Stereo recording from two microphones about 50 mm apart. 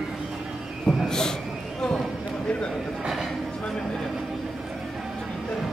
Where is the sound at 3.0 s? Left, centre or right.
Centre.